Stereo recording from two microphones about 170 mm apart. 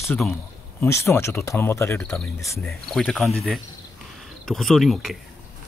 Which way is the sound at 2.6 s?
Centre (ahead or behind).